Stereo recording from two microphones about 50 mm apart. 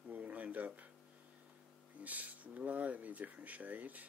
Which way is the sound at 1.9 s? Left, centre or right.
Right.